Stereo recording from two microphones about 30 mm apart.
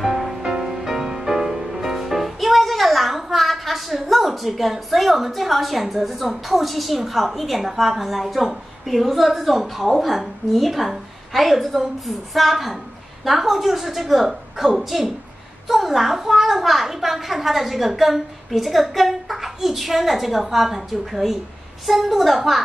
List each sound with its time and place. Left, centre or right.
0.0 s music: centre
0.4 s music: right
0.7 s music: centre
7.3 s a woman's voice: centre